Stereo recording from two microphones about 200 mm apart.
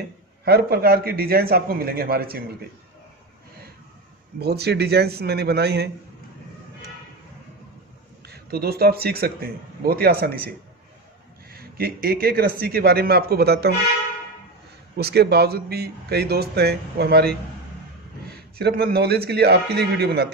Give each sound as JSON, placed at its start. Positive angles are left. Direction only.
{"t": 0.5, "sound": "speech", "side_deg": -50}
{"t": 4.4, "sound": "speech", "side_deg": -55}
{"t": 8.3, "sound": "speech", "side_deg": -50}
{"t": 11.5, "sound": "speech", "side_deg": -50}
{"t": 15.0, "sound": "speech", "side_deg": -55}
{"t": 18.3, "sound": "speech", "side_deg": -55}